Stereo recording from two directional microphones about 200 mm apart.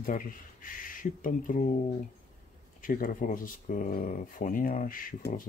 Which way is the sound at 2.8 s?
45° left (ahead or behind).